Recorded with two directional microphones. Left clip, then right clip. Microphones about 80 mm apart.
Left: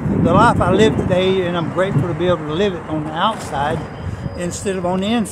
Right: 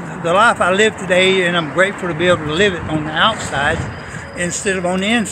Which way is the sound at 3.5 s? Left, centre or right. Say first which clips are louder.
Right 3 dB; left.